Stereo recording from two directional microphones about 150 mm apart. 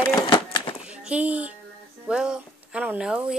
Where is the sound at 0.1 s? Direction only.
30° left (ahead or behind).